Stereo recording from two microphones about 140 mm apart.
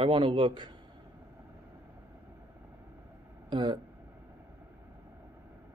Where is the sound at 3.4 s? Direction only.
35° right (ahead or behind).